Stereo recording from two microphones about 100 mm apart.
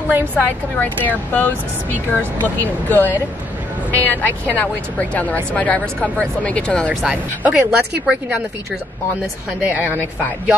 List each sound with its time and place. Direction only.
0.4 s a woman's voice: 15° left (ahead or behind)
6.9 s speech: centre (ahead or behind)
9.6 s speech: 15° right (ahead or behind)